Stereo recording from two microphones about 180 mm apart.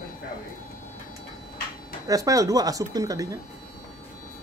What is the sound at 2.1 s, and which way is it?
Speech, 20° right (ahead or behind).